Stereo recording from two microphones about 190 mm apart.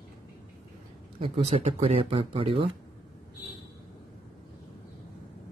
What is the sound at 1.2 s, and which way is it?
Speech, 30° right (ahead or behind).